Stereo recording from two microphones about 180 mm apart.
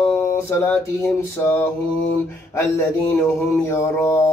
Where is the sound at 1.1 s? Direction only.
15° left (ahead or behind).